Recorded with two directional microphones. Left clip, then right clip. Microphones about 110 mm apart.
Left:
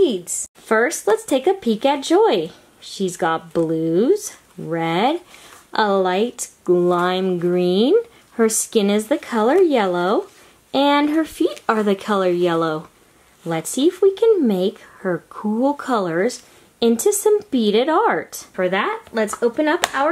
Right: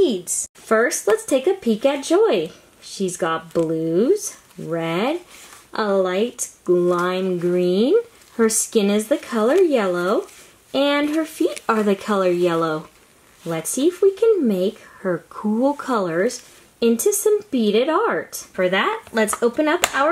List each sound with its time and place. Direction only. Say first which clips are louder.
0.7 s speech: even; 15° left (ahead or behind)
7.0 s speech: left 2 dB; 15° left (ahead or behind)
11.6 s speech: even; 5° left (ahead or behind)
13.5 s speech: left 2 dB; 20° left (ahead or behind)
18.6 s speech: right 1 dB; 10° left (ahead or behind)